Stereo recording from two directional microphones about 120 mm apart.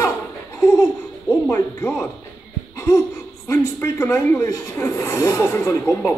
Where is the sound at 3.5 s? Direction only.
25° left (ahead or behind).